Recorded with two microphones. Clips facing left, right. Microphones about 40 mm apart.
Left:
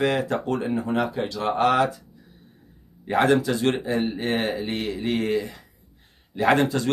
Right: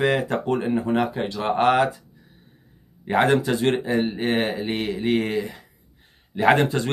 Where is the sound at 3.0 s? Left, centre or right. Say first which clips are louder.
Right 1 dB; centre.